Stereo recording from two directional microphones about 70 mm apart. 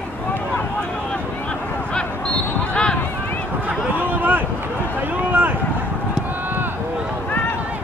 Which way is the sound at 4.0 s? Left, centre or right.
Right.